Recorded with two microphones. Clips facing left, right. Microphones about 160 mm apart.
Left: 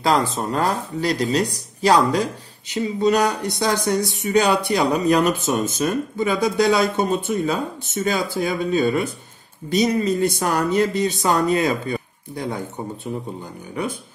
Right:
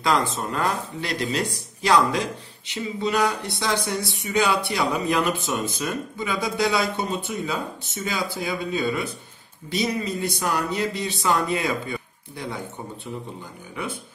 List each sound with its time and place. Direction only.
0.0 s speech: 35° left (ahead or behind)